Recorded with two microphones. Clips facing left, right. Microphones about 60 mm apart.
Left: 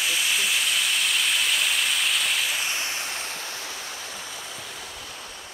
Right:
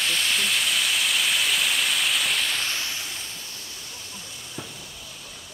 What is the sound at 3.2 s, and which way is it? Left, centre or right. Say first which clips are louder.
Waves: left 5 dB; left.